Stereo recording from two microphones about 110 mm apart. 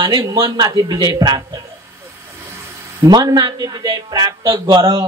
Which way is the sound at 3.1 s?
40° right (ahead or behind).